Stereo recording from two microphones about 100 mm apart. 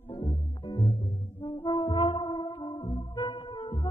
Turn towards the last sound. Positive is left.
turn(degrees=55)  # may be behind; listen again after turning